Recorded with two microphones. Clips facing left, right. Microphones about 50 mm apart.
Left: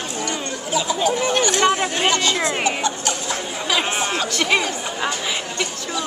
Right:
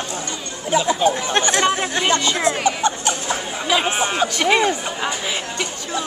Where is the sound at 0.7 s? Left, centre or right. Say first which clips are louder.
Right 3 dB; right.